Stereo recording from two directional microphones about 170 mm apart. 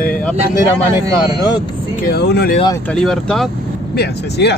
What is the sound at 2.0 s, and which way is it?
Speech, 75° left (ahead or behind).